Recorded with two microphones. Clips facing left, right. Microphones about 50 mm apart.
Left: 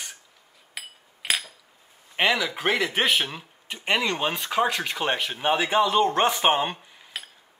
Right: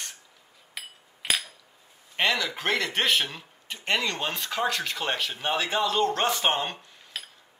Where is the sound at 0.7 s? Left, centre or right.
Centre.